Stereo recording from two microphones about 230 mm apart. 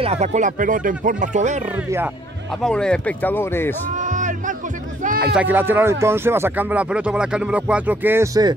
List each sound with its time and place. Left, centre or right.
0.0 s speech: right
2.6 s speech: centre
4.0 s music: right
5.3 s speech: centre